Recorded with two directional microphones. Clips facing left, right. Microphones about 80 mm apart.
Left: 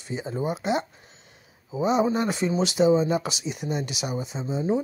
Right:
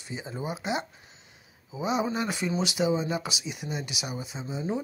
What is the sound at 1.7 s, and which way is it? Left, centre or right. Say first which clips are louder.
Speech: left 6 dB; left.